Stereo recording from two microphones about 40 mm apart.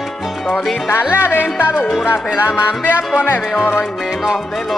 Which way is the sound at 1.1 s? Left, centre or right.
Left.